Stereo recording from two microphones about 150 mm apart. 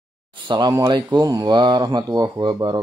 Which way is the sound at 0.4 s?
30° right (ahead or behind).